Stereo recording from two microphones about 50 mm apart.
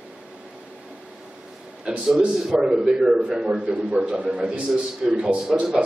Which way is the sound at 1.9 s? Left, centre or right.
Centre.